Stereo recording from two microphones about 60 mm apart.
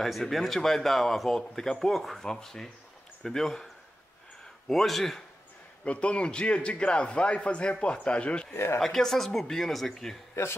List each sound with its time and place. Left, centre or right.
0.0 s a man's voice: centre
5.9 s a man's voice: centre
8.7 s speech: centre
10.4 s a man's voice: left